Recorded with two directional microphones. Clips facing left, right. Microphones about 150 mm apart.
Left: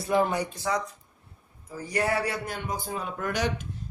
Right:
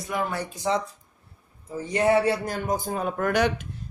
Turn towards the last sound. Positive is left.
turn(degrees=-60)  # may be behind; listen again after turning